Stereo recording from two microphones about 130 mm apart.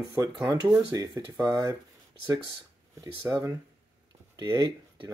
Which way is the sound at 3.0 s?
20° right (ahead or behind).